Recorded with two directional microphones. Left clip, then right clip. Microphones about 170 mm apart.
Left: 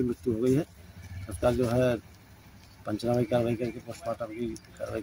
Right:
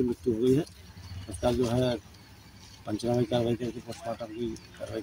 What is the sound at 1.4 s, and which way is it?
Speech, 10° left (ahead or behind).